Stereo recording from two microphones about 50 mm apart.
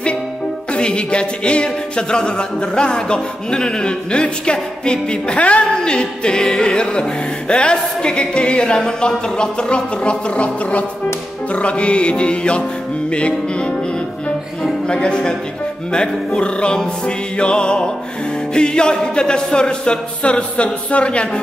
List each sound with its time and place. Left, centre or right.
0.7 s music: centre
14.9 s music: centre